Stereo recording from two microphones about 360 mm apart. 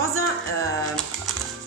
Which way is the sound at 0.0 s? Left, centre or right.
Right.